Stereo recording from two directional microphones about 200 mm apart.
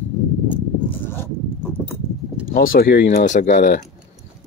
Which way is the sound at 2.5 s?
45° left (ahead or behind).